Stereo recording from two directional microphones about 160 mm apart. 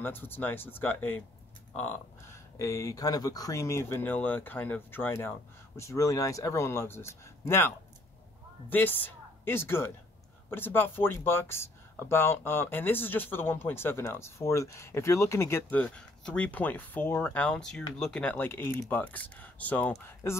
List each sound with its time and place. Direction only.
0.0 s speech: 15° left (ahead or behind)
2.6 s a woman's voice: 20° left (ahead or behind)